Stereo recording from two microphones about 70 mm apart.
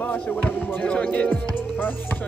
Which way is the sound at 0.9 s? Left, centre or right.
Centre.